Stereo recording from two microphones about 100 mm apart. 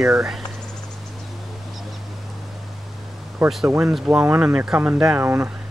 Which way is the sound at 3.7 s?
25° right (ahead or behind).